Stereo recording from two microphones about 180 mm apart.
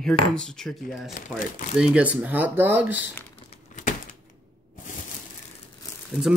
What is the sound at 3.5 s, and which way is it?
Crumpling, 45° left (ahead or behind).